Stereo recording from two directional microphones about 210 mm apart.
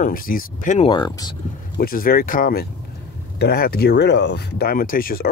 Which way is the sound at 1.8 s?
45° left (ahead or behind).